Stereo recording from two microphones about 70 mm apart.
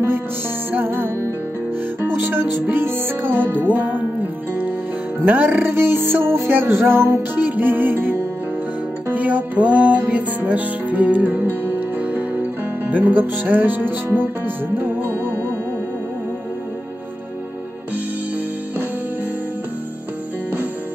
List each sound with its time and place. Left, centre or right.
0.7 s music: right
2.1 s music: right
5.2 s music: right